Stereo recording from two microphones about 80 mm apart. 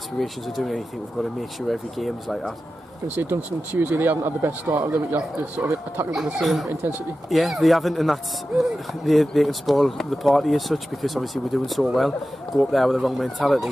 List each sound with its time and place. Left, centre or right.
0.2 s speech: centre
3.2 s speech: right
6.4 s speech: centre